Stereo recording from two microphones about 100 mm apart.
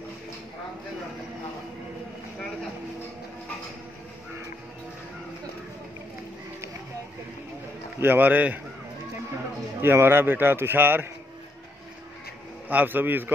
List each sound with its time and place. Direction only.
8.0 s a man's voice: 20° right (ahead or behind)
9.8 s a man's voice: 25° right (ahead or behind)
12.6 s a man's voice: 20° right (ahead or behind)